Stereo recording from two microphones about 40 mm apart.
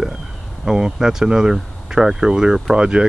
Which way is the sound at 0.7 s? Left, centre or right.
Centre.